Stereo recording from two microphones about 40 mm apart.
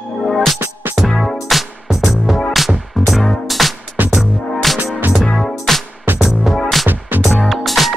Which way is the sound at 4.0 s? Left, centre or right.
Right.